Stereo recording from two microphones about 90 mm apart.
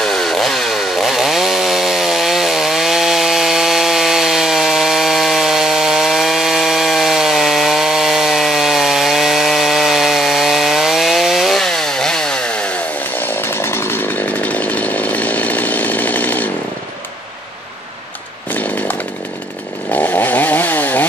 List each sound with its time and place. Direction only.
0.0 s chainsaw: 5° left (ahead or behind)
13.4 s chainsaw: 25° left (ahead or behind)
18.5 s chainsaw: 20° left (ahead or behind)